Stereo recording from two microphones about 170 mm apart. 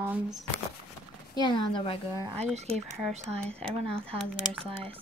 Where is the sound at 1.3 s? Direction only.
30° left (ahead or behind).